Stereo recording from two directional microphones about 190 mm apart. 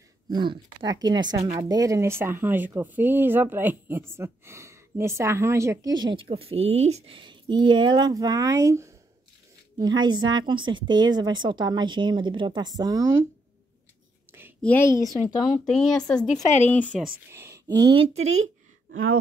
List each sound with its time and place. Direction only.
0.3 s speech: 25° right (ahead or behind)
14.6 s a woman's voice: 10° left (ahead or behind)
17.3 s speech: 15° right (ahead or behind)
18.2 s a sound: 90° right